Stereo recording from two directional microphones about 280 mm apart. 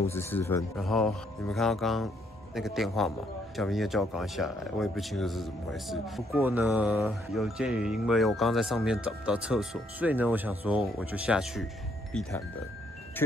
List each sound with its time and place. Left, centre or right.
0.1 s speech: centre